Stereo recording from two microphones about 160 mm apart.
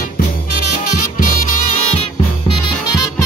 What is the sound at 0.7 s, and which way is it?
Music, 55° left (ahead or behind).